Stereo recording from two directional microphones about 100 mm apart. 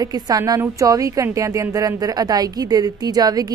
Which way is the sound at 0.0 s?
40° right (ahead or behind).